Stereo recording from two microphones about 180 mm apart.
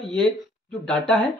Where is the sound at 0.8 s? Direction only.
5° left (ahead or behind).